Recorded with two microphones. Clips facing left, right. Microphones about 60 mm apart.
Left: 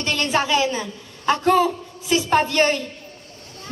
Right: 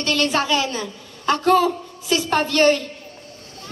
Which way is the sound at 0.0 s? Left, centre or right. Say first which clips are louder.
Right 1 dB; centre.